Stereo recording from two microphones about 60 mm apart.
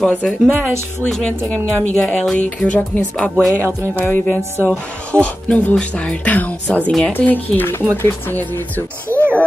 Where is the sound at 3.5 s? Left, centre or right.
Right.